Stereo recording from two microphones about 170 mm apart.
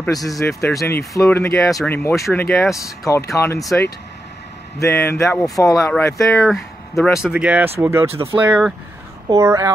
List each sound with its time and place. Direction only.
0.3 s speech: 15° left (ahead or behind)
6.4 s speech: centre (ahead or behind)
9.3 s speech: 15° right (ahead or behind)